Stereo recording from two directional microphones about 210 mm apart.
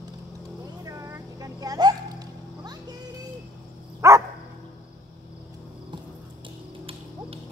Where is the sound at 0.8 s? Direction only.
15° right (ahead or behind).